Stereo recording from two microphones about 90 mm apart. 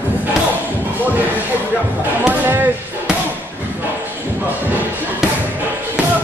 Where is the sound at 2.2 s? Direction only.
20° right (ahead or behind).